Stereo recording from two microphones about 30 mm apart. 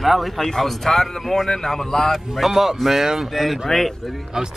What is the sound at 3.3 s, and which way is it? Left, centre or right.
Speech, centre.